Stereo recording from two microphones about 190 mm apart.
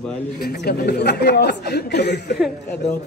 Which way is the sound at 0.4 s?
55° left (ahead or behind).